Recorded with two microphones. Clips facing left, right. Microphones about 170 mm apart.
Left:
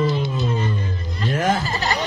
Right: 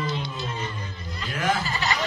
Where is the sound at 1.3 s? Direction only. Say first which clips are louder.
Left 4 dB; 40° left (ahead or behind).